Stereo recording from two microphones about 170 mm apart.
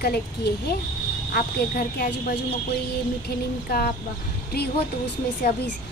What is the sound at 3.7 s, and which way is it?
Speech, 70° left (ahead or behind).